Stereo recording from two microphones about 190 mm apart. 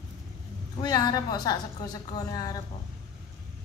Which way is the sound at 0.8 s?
20° left (ahead or behind).